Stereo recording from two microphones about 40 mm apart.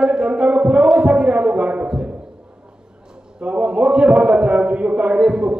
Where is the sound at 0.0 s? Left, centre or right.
Right.